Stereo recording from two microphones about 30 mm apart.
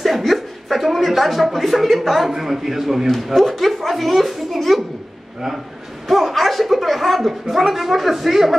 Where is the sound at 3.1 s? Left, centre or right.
Centre.